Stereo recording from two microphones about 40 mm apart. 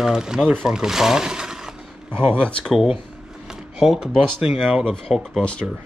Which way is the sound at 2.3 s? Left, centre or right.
Left.